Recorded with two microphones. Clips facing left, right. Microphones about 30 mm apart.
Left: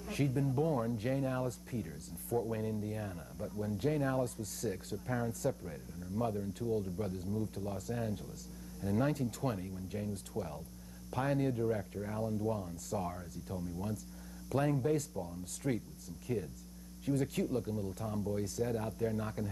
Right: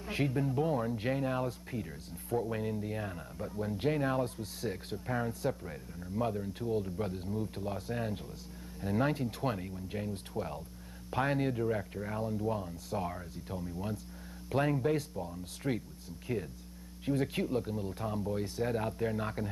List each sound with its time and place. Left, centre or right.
0.0 s speech: right